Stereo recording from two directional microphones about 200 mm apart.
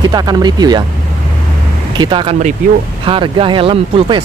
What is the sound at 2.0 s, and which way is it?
Speech, 25° right (ahead or behind).